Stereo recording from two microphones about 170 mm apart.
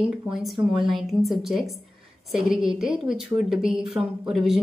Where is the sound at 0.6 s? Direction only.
30° right (ahead or behind).